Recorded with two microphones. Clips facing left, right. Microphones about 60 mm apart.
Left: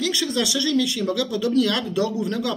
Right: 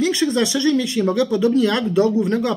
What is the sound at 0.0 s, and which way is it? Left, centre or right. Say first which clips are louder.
Speech: right 5 dB; right.